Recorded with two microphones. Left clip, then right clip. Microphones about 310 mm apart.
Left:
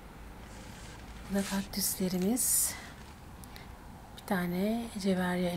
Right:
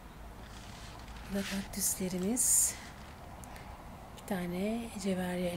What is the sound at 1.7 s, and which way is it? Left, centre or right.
Speech, right.